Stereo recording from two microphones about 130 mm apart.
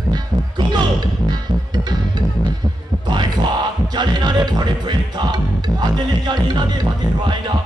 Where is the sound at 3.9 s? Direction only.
35° right (ahead or behind).